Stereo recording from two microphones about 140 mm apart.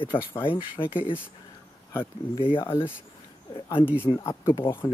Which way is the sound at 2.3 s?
35° left (ahead or behind).